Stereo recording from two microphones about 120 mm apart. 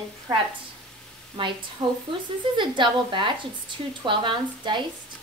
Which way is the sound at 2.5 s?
45° right (ahead or behind).